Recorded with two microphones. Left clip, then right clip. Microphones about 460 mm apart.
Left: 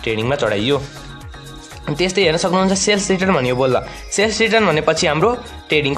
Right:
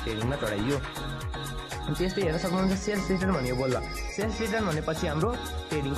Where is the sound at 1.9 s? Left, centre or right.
Left.